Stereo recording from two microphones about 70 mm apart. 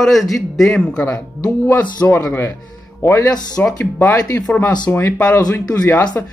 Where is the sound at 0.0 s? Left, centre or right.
Centre; by 2.0 s left.